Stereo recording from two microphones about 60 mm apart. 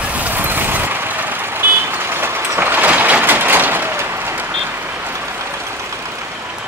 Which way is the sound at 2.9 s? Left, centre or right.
Right.